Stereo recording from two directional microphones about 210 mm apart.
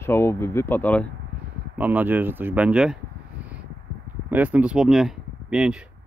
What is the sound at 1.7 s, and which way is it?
Speech, 10° right (ahead or behind).